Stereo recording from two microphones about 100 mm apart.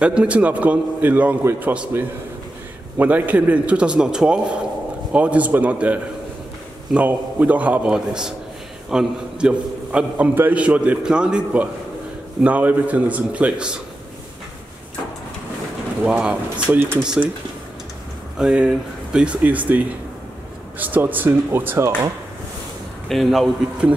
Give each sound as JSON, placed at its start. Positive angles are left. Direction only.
{"t": 0.0, "sound": "a man's voice", "side_deg": -10}
{"t": 1.7, "sound": "a man's voice", "side_deg": -10}
{"t": 16.0, "sound": "a man's voice", "side_deg": -10}
{"t": 18.4, "sound": "a man's voice", "side_deg": -5}
{"t": 20.8, "sound": "speech", "side_deg": -20}
{"t": 23.0, "sound": "a man's voice", "side_deg": 0}